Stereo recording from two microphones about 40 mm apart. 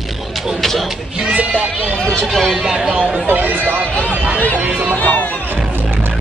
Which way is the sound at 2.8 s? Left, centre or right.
Right.